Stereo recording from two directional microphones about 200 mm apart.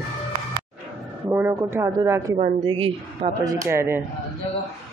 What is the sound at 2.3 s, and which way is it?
Speech, 30° right (ahead or behind).